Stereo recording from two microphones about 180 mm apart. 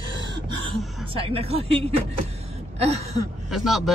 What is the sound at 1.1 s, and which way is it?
Speech, 30° right (ahead or behind).